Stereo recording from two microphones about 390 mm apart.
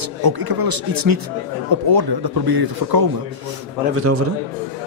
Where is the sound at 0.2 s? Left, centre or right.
Right.